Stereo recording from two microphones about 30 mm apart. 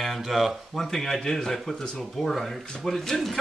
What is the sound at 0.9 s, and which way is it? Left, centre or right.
Speech, centre.